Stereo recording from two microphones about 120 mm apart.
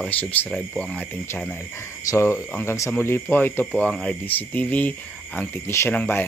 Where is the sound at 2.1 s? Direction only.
25° left (ahead or behind).